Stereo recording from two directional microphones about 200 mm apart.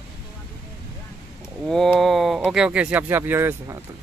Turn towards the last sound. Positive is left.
turn(degrees=-10)  # may be behind; listen again after turning